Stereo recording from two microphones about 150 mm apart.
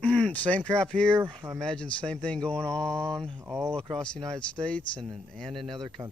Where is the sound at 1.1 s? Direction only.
30° right (ahead or behind).